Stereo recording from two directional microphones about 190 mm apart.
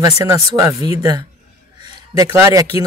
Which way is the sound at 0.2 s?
15° right (ahead or behind).